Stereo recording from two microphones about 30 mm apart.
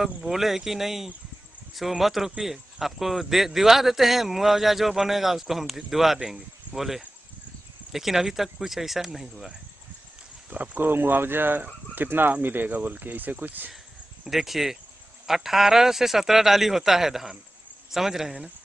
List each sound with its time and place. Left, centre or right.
0.0 s speech: centre
10.5 s speech: right
10.8 s speech: right
12.6 s speech: right
14.2 s speech: centre